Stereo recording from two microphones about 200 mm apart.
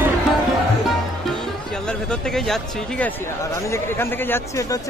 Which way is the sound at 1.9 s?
5° left (ahead or behind).